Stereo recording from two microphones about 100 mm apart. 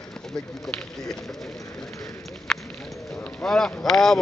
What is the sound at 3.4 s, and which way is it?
Speech, 5° left (ahead or behind).